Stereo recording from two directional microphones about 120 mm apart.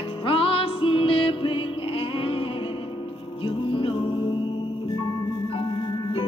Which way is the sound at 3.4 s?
45° left (ahead or behind).